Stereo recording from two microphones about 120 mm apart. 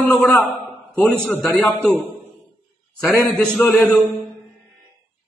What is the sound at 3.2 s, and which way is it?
Speech, 10° left (ahead or behind).